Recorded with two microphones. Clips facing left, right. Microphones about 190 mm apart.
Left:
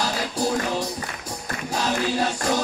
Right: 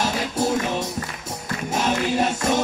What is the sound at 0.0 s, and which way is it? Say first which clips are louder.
Music: right 2 dB; 25° right (ahead or behind).